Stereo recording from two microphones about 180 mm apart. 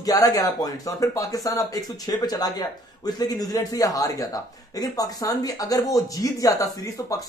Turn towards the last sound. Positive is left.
turn(degrees=20)  # may be behind; listen again after turning